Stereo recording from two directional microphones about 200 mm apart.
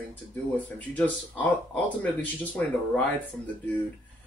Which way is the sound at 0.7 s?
10° left (ahead or behind).